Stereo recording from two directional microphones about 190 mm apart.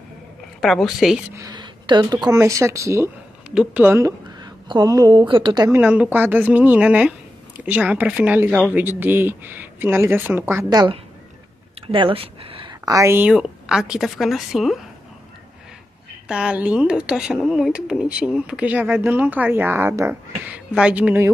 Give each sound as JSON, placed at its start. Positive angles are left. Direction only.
{"t": 0.6, "sound": "a woman's voice", "side_deg": 0}
{"t": 1.3, "sound": "a woman's voice", "side_deg": -20}
{"t": 5.8, "sound": "speech", "side_deg": -10}
{"t": 13.3, "sound": "a woman's voice", "side_deg": -5}
{"t": 16.3, "sound": "speech", "side_deg": -5}